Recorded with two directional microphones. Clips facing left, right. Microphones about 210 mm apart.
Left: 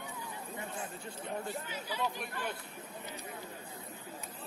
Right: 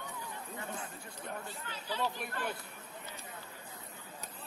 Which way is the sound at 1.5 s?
10° left (ahead or behind).